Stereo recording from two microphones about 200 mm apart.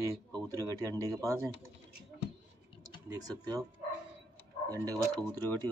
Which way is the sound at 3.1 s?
20° right (ahead or behind).